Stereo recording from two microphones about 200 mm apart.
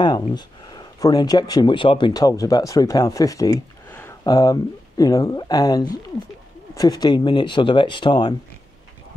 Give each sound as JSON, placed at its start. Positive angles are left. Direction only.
{"t": 0.0, "sound": "speech", "side_deg": 20}